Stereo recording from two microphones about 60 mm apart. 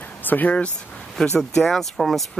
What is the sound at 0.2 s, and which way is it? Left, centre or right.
Speech, left.